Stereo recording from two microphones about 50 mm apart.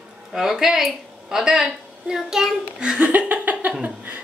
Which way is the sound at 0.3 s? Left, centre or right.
Centre.